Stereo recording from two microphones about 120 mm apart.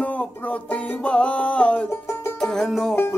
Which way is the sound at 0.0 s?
10° left (ahead or behind).